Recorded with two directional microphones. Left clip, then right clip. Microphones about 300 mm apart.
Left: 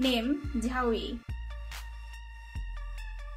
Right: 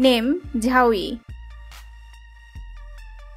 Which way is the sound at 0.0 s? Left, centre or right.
Right.